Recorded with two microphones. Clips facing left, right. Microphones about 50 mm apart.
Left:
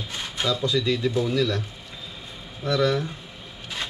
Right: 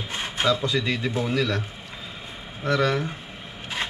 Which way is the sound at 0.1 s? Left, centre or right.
Right.